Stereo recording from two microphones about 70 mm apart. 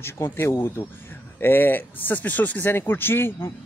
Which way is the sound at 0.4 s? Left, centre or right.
Left.